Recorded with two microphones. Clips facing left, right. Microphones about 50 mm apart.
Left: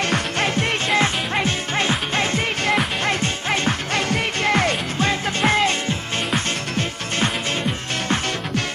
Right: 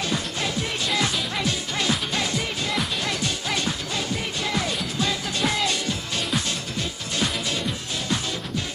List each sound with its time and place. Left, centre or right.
0.0 s music: left
3.9 s music: left